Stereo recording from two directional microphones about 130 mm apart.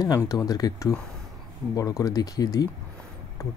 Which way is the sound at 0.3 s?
30° left (ahead or behind).